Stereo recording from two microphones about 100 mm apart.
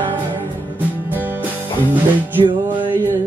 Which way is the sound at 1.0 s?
20° right (ahead or behind).